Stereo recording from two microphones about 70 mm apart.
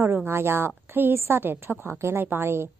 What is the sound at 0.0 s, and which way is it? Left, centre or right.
A woman's voice, right.